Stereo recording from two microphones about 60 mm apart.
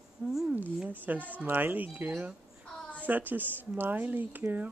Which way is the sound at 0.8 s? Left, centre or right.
Right.